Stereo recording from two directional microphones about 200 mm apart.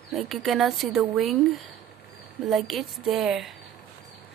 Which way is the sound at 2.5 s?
Centre (ahead or behind).